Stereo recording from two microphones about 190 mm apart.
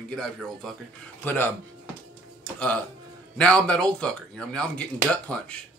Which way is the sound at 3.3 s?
5° left (ahead or behind).